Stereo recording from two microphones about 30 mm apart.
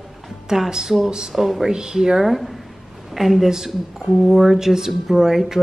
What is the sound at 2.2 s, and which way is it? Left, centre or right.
A woman's voice, centre.